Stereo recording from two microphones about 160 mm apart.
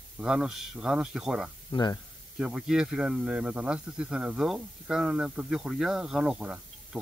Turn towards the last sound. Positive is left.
turn(degrees=-5)  # may be behind; listen again after turning